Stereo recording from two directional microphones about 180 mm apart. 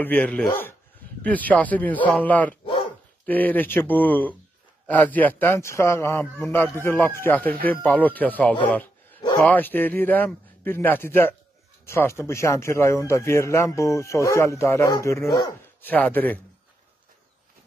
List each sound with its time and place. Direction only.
0.0 s speech: 10° left (ahead or behind)